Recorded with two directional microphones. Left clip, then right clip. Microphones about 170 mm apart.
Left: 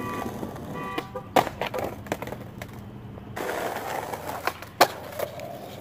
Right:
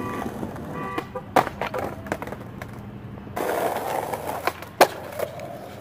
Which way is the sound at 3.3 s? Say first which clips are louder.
Right 5 dB; 45° right (ahead or behind).